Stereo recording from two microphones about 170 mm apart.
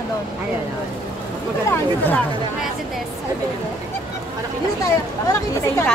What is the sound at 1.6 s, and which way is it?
Speech, 10° left (ahead or behind).